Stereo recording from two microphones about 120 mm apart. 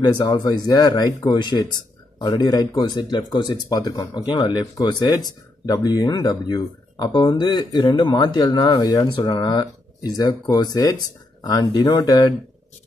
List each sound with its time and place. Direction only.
0.0 s speech: 40° left (ahead or behind)